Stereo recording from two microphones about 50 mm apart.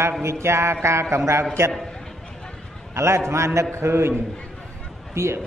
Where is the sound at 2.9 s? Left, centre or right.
Right.